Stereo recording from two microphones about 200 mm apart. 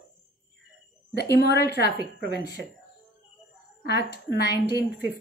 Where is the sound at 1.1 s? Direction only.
55° left (ahead or behind).